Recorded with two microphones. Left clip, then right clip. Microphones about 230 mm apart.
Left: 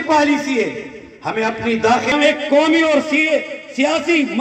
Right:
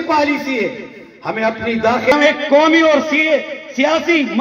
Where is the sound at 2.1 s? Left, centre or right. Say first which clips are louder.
Right 2 dB; right.